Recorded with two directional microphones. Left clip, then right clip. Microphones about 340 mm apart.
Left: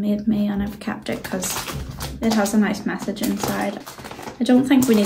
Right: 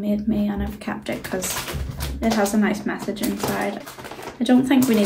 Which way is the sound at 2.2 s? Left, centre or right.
Centre.